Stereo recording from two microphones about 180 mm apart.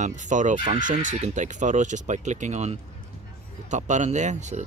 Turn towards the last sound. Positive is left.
turn(degrees=-40)  # may be behind; listen again after turning